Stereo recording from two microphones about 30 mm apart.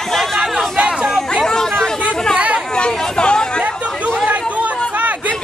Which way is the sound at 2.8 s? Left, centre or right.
Left.